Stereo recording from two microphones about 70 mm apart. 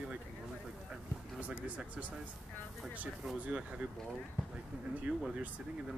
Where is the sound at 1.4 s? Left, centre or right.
Centre.